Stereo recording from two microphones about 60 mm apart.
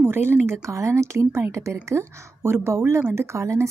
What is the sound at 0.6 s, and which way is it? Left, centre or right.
A woman's voice, right.